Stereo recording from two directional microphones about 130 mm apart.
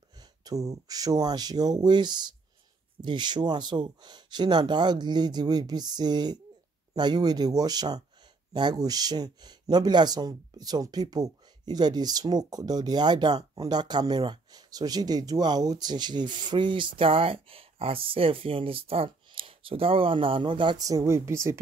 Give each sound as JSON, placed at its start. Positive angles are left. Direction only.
{"t": 0.2, "sound": "speech", "side_deg": -30}